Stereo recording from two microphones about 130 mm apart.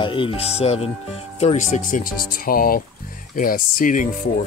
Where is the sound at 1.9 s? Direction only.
85° left.